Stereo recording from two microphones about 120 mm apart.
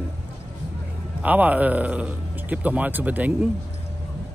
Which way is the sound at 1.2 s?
15° right (ahead or behind).